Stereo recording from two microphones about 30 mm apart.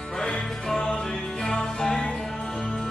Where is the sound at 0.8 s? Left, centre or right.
Left.